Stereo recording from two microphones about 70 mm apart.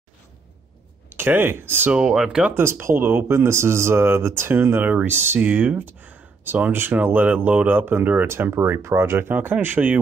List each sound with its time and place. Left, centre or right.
1.1 s speech: right
1.9 s speech: centre
2.5 s speech: right
8.3 s speech: right